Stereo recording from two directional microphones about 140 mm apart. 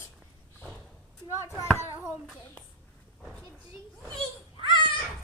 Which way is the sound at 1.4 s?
20° left (ahead or behind).